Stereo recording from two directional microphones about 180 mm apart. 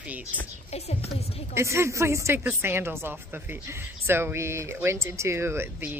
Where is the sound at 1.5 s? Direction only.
15° right (ahead or behind).